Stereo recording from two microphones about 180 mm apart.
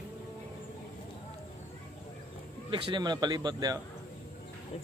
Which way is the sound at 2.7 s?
25° right (ahead or behind).